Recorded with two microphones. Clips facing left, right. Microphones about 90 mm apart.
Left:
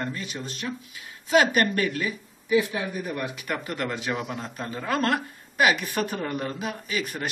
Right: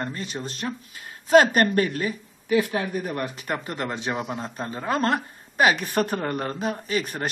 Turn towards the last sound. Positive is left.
turn(degrees=-40)  # may be behind; listen again after turning